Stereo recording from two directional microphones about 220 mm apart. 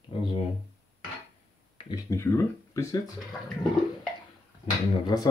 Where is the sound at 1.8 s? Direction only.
15° left (ahead or behind).